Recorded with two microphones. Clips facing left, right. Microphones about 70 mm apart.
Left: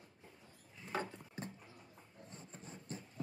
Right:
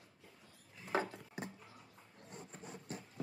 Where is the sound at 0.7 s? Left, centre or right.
Centre.